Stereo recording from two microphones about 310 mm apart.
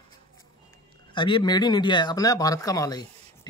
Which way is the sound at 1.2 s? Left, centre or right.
Centre.